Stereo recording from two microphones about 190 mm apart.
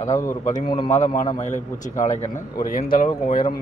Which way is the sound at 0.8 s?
35° left (ahead or behind).